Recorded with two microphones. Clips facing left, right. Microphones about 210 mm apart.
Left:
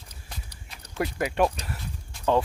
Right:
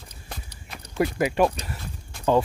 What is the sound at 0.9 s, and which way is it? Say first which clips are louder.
Speech: right 4 dB; 5° right (ahead or behind).